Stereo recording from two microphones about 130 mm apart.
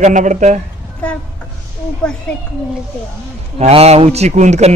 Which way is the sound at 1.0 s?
10° left (ahead or behind).